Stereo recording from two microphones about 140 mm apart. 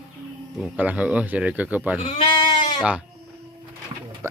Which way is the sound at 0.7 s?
10° right (ahead or behind).